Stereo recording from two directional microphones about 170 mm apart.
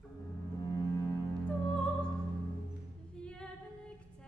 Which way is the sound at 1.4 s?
5° left (ahead or behind).